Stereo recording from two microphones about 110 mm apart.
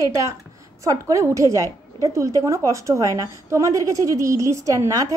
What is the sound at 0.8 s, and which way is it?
A woman's voice, 30° right (ahead or behind).